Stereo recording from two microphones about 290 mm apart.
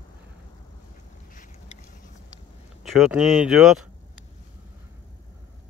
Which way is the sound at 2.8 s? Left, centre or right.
Centre.